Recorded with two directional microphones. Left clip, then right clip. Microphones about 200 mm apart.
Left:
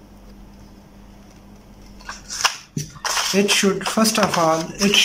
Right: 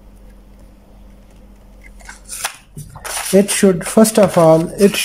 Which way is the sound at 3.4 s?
30° right (ahead or behind).